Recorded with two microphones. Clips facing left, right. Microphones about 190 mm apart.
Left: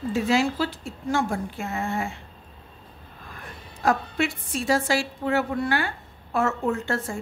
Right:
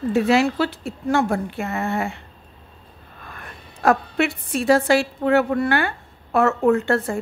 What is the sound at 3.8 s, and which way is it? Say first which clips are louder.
A woman's voice: right 5 dB; 65° right (ahead or behind).